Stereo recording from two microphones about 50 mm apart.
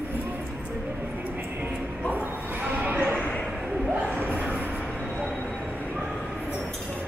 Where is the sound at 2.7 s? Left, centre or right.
Right.